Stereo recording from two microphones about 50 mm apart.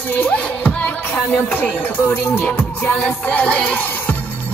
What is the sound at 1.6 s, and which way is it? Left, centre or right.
Music, left.